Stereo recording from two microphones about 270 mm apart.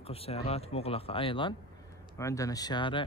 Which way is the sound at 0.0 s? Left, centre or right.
Left.